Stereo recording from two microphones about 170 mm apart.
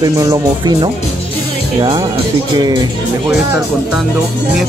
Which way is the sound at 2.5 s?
25° right (ahead or behind).